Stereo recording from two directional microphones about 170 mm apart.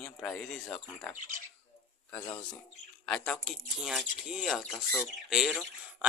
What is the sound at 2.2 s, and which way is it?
Speech, 25° left (ahead or behind).